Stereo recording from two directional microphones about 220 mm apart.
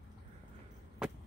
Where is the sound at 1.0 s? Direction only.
5° right (ahead or behind).